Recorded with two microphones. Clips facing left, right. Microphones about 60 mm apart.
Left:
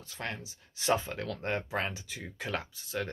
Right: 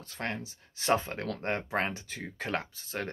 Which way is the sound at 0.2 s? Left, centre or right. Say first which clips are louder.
Right 3 dB; right.